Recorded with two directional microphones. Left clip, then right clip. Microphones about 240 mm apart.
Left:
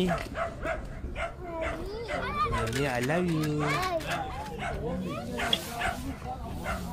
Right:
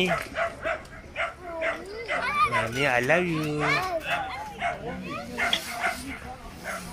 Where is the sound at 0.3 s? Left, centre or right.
Left.